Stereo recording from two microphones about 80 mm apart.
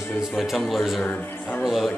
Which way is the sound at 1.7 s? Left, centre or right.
Centre.